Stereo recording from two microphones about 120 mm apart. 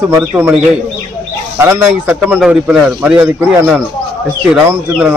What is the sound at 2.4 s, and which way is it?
Speech, 5° right (ahead or behind).